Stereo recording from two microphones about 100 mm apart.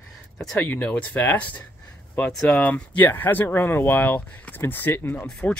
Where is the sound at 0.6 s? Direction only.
15° left (ahead or behind).